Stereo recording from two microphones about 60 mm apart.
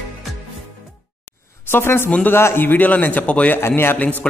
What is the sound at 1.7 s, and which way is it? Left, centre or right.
A man's voice, left.